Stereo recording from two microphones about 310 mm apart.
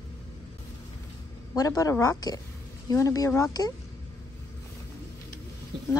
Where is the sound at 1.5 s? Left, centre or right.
Centre.